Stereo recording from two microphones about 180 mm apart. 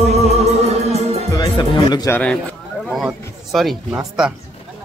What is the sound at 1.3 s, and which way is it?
Music, 25° left (ahead or behind).